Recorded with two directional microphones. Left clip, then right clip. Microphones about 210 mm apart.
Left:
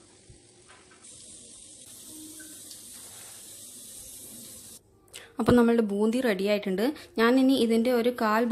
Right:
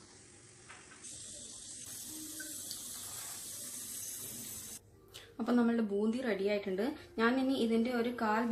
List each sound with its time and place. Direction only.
5.4 s a woman's voice: 40° left (ahead or behind)